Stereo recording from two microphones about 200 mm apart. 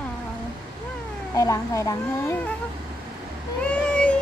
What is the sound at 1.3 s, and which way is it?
Speech, 15° left (ahead or behind).